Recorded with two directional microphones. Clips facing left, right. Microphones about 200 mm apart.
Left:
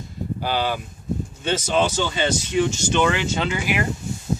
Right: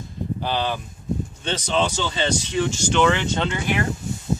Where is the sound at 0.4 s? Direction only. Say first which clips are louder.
Left 2 dB; 5° left (ahead or behind).